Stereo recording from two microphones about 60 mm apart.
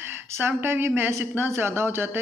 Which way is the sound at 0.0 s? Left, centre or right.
Right.